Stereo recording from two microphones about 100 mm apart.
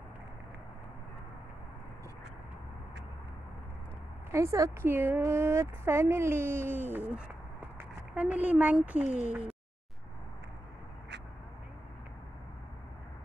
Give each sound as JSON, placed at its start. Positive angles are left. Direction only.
{"t": 4.3, "sound": "speech", "side_deg": -30}
{"t": 8.1, "sound": "speech", "side_deg": -15}